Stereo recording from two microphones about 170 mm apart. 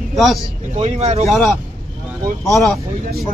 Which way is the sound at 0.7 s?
40° right (ahead or behind).